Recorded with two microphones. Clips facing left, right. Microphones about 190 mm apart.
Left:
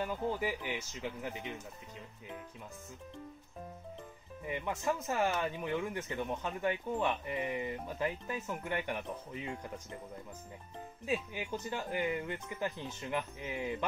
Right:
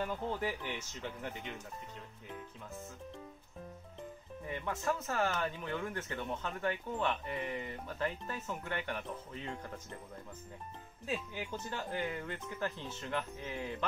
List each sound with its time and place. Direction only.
0.0 s speech: 10° left (ahead or behind)
4.5 s speech: 15° left (ahead or behind)
11.1 s speech: 15° left (ahead or behind)